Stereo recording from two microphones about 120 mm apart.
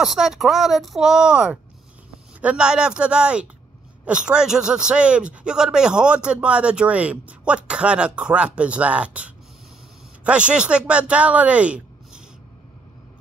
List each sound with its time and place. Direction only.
0.0 s a man's voice: 5° right (ahead or behind)